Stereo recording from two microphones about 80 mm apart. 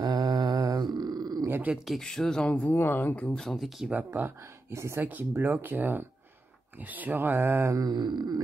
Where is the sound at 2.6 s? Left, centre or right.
Left.